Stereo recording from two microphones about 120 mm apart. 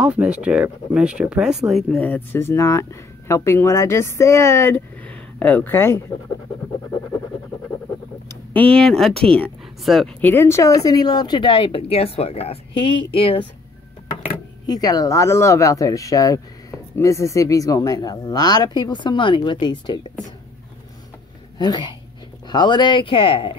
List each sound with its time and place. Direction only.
0.0 s speech: 10° right (ahead or behind)
2.0 s speech: 15° left (ahead or behind)
8.5 s speech: 10° left (ahead or behind)
10.2 s speech: 20° left (ahead or behind); by 13.5 s 50° left (ahead or behind)
14.7 s speech: 30° left (ahead or behind)
21.5 s speech: 35° left (ahead or behind)